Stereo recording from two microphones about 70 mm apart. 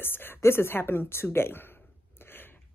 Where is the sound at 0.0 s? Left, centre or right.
Left.